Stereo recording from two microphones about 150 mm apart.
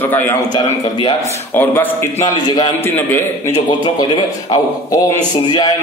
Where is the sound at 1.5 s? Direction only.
15° left (ahead or behind).